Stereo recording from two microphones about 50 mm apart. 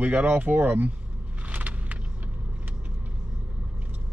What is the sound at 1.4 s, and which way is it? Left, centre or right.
Vehicle, right.